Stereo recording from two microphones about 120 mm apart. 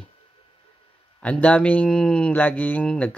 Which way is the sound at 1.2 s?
10° left (ahead or behind).